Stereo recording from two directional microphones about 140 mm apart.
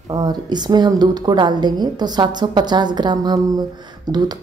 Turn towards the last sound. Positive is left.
turn(degrees=-30)  # may be behind; listen again after turning